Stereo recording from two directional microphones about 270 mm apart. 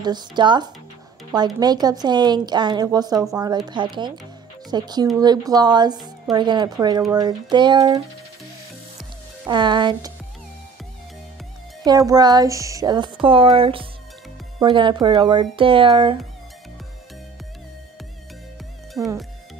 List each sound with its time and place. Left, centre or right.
0.0 s speech: centre
9.5 s speech: centre
11.8 s speech: centre
19.0 s speech: centre